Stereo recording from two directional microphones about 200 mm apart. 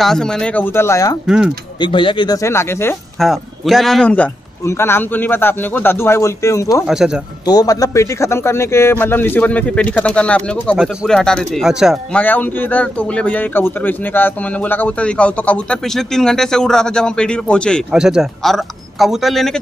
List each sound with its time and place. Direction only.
0.0 s a man's voice: 5° left (ahead or behind)
1.2 s a man's voice: 5° right (ahead or behind)
1.8 s a man's voice: 25° left (ahead or behind)
3.2 s a man's voice: centre (ahead or behind)
6.9 s a man's voice: 5° right (ahead or behind)
7.4 s a man's voice: 20° left (ahead or behind); by 19.6 s centre (ahead or behind)